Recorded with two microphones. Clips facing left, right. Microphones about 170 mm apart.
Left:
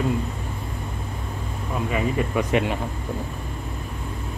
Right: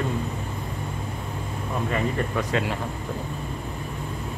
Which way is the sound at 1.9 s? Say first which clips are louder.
Left 3 dB; 5° left (ahead or behind).